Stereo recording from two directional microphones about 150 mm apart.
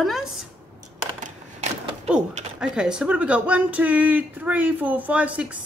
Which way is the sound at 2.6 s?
5° right (ahead or behind).